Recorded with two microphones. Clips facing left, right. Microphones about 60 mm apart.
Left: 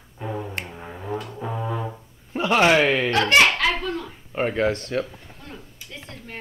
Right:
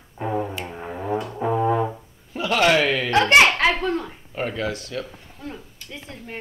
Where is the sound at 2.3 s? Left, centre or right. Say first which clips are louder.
Left 1 dB; left.